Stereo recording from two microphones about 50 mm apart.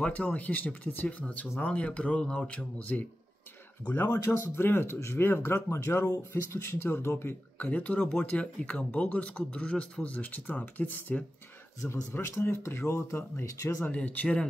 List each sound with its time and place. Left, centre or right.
0.0 s speech: left
3.9 s speech: left
12.2 s speech: left
13.8 s speech: left